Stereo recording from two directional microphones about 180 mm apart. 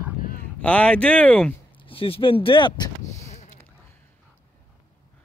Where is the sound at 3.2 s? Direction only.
40° left (ahead or behind).